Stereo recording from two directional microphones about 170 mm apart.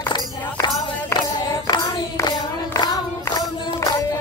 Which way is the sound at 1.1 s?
20° left (ahead or behind).